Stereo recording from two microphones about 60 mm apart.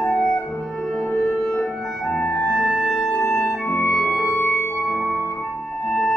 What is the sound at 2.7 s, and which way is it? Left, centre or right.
Music, centre.